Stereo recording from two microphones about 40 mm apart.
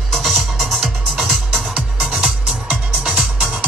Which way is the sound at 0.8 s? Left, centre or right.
Centre.